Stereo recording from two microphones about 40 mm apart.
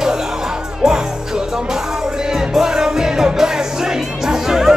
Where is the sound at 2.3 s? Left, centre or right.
Centre.